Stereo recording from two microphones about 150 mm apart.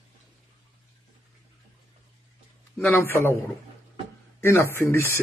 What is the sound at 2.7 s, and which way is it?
Speech, 15° left (ahead or behind).